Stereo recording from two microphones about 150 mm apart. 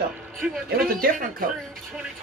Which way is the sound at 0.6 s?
85° right.